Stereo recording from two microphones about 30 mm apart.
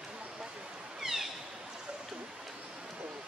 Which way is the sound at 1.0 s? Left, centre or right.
Centre.